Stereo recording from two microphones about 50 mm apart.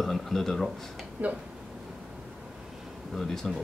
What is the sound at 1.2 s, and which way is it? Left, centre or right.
Speech, right.